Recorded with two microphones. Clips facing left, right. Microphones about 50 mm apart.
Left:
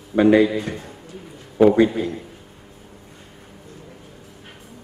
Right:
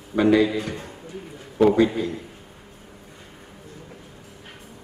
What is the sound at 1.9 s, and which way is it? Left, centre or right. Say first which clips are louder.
Speech: left 2 dB; left.